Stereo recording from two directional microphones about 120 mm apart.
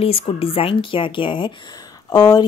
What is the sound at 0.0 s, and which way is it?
A woman's voice, 55° left (ahead or behind).